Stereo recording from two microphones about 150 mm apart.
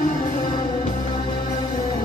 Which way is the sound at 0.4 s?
35° left (ahead or behind).